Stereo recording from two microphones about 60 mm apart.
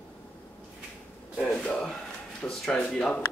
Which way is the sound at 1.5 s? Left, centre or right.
Centre.